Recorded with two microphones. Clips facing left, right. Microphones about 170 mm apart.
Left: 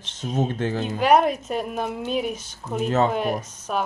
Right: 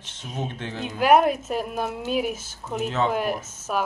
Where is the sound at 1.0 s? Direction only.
5° right (ahead or behind).